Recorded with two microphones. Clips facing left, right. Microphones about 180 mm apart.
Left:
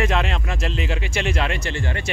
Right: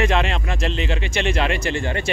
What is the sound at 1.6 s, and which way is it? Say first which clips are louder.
Speech: right 4 dB; 15° right (ahead or behind).